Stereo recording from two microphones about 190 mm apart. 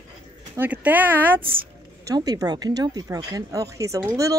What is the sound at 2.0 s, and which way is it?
Speech, 20° right (ahead or behind).